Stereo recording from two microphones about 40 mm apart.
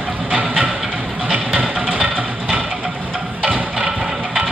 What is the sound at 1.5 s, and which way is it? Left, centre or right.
Music, right.